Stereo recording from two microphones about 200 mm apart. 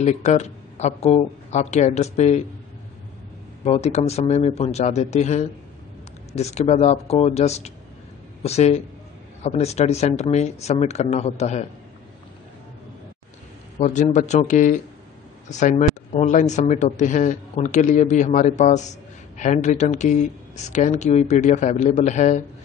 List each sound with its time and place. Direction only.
0.0 s speech: 35° left (ahead or behind)
3.6 s speech: 30° left (ahead or behind)
13.7 s speech: 35° left (ahead or behind)